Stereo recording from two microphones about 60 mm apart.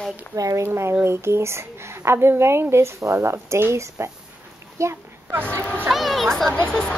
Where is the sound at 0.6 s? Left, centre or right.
Right.